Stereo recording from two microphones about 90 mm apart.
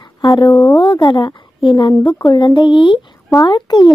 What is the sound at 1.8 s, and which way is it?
Speech, 50° left (ahead or behind).